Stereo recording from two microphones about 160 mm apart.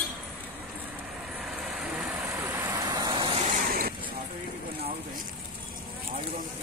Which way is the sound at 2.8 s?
25° right (ahead or behind).